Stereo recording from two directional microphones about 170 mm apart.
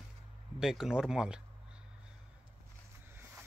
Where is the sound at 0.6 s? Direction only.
5° right (ahead or behind).